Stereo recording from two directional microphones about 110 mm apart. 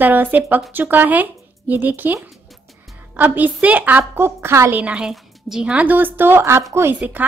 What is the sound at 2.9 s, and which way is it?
A woman's voice, 15° right (ahead or behind).